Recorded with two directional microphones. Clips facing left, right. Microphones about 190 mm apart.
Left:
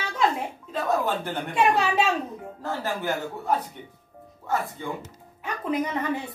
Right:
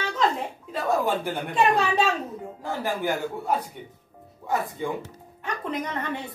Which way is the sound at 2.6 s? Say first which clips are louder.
Right 1 dB; 15° right (ahead or behind).